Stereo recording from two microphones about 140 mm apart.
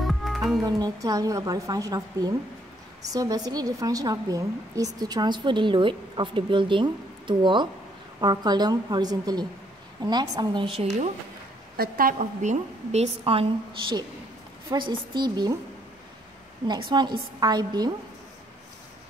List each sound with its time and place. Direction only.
0.0 s music: centre (ahead or behind)
0.7 s a woman's voice: 25° right (ahead or behind)
11.7 s a woman's voice: 90° right; by 15.5 s 30° right (ahead or behind)
16.9 s a woman's voice: 30° right (ahead or behind)